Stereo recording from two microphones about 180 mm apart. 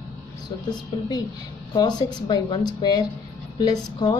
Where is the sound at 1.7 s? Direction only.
25° left (ahead or behind).